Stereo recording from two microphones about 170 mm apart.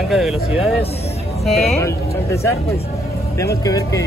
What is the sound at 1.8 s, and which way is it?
Speech, 15° left (ahead or behind).